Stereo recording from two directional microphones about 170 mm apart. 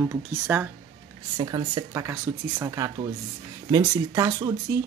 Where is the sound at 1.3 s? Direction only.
25° right (ahead or behind).